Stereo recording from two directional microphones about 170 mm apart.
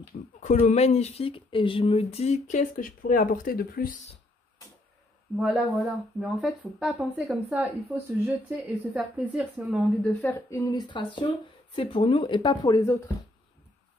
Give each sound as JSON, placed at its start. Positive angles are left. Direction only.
{"t": 0.4, "sound": "speech", "side_deg": 45}
{"t": 5.4, "sound": "speech", "side_deg": 0}
{"t": 10.2, "sound": "speech", "side_deg": 15}